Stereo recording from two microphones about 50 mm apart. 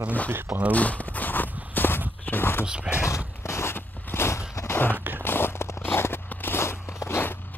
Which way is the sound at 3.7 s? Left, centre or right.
Left.